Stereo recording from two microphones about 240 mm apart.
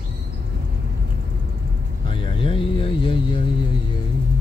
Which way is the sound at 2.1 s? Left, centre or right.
Left.